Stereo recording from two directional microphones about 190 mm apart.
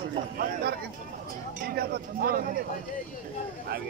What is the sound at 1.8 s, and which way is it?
Speech, 50° right (ahead or behind).